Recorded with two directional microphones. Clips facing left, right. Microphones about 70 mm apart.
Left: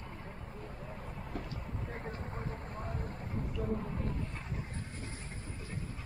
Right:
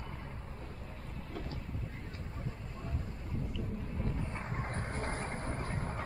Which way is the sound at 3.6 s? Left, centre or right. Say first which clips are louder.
Left 6 dB; left.